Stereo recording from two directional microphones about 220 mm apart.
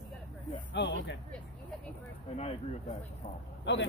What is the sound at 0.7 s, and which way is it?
Speech, 55° left (ahead or behind).